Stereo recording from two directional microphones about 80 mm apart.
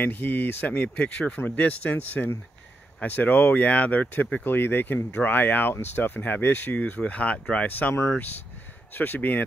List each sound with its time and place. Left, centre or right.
0.0 s speech: left
7.9 s speech: left
8.9 s speech: left